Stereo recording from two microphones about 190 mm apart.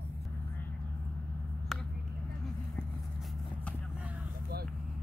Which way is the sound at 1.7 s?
Centre (ahead or behind).